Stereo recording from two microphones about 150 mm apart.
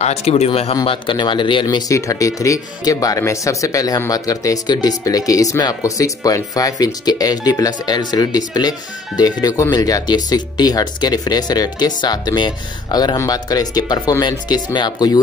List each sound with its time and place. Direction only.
0.0 s speech: 45° left (ahead or behind); by 15.1 s 30° left (ahead or behind)